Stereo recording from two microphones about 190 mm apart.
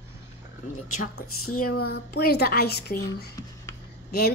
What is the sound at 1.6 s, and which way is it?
Speech, 55° left (ahead or behind).